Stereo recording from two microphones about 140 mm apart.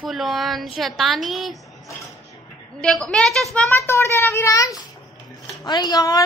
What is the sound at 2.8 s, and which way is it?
Speech, 5° left (ahead or behind).